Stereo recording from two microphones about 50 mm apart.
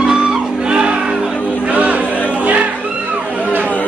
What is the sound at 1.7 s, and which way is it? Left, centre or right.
Music, right.